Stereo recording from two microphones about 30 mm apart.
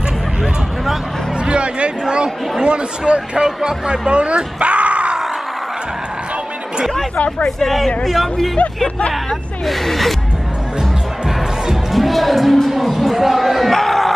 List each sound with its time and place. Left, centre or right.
1.4 s a sound: right
2.6 s speech: right
4.1 s speech: right
7.2 s speech: left
7.4 s speech: centre
9.7 s speech: centre
10.8 s music: centre
12.6 s speech: centre
13.7 s crowd: centre